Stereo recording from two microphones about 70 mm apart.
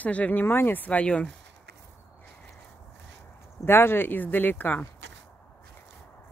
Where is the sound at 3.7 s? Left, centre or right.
Left.